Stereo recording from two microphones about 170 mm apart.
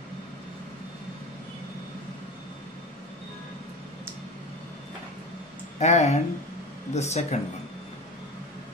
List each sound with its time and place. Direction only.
5.8 s speech: 40° left (ahead or behind)